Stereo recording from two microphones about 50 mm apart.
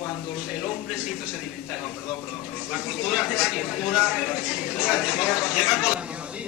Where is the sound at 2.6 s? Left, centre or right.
Centre.